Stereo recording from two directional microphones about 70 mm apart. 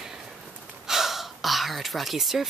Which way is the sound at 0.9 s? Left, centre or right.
Centre.